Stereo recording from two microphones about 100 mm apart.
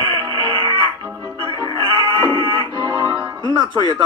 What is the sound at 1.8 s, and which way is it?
Music, 40° right (ahead or behind).